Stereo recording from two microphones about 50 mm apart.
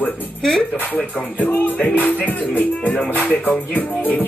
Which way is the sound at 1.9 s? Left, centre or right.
Left.